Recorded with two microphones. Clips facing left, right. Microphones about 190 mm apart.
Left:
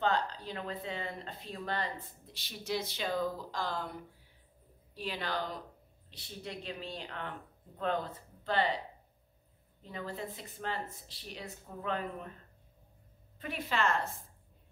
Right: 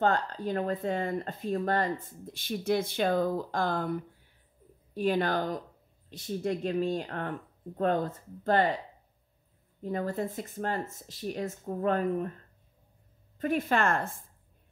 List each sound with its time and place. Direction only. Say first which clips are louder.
0.0 s speech: right 5 dB; 50° right (ahead or behind)
4.9 s speech: right 10 dB; 50° right (ahead or behind)
9.8 s speech: right 9 dB; 45° right (ahead or behind)
13.4 s speech: right 7 dB; 45° right (ahead or behind)